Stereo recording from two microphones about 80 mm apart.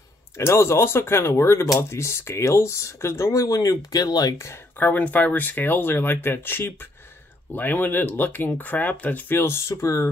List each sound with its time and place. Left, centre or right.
0.4 s speech: left
4.7 s speech: left